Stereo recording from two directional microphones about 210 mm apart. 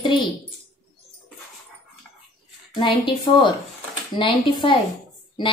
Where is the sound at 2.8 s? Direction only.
20° left (ahead or behind).